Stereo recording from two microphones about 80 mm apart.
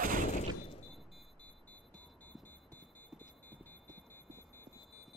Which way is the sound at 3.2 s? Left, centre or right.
Left.